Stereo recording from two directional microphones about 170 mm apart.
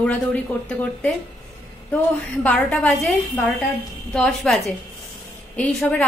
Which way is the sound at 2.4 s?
10° left (ahead or behind).